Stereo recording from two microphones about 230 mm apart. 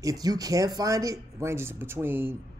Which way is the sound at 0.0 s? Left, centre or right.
Centre.